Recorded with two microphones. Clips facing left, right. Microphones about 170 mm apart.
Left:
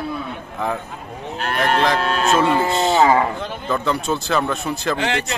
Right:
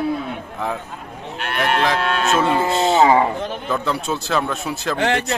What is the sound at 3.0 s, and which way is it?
Speech, 20° right (ahead or behind).